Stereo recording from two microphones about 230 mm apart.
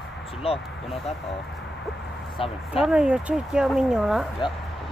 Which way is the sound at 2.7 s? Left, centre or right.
Centre.